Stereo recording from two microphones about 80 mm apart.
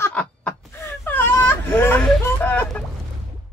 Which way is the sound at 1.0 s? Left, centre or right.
Left.